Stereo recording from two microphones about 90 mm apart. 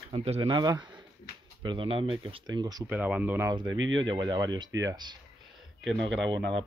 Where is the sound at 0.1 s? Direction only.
65° right (ahead or behind).